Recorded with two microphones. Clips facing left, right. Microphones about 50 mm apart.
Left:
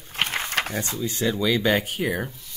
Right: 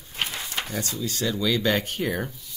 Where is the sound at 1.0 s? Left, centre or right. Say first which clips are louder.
Left 3 dB; centre.